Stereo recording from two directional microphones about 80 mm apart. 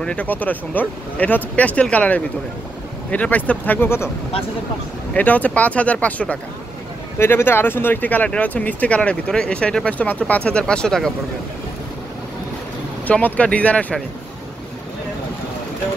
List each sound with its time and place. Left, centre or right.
0.0 s speech: centre
5.1 s speech: centre
7.2 s speech: left; by 11.1 s centre
13.0 s speech: centre